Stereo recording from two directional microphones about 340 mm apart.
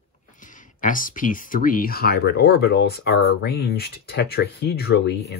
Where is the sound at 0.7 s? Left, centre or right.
Left.